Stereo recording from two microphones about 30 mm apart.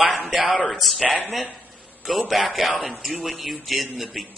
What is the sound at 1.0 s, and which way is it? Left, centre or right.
Speech, right.